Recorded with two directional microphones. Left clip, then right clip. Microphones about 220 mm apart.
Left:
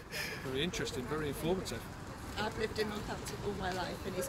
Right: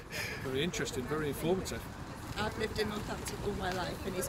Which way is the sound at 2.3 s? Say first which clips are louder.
Right 1 dB; 20° right (ahead or behind).